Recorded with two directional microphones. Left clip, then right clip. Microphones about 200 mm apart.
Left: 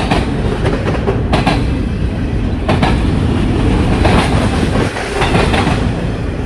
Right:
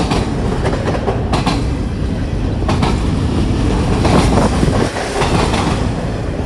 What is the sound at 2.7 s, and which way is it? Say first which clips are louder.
Train: left 4 dB; 25° right (ahead or behind).